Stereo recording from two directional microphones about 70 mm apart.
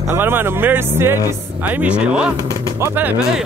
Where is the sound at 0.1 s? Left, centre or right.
Right.